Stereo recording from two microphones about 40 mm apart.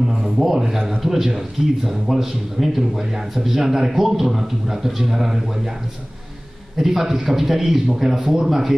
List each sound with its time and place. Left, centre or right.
0.0 s a sound: centre
1.0 s a man's voice: centre
6.8 s speech: centre